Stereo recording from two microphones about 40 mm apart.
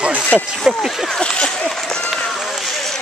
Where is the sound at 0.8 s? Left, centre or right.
Centre.